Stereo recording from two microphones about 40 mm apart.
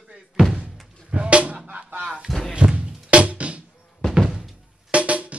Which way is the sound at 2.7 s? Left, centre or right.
Right.